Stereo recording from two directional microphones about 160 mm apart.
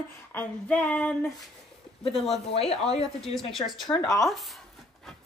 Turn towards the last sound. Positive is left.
turn(degrees=20)  # may be behind; listen again after turning